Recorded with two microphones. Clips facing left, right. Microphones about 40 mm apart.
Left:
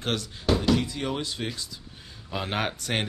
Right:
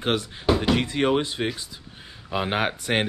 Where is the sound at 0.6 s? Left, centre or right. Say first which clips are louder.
Right 4 dB; right.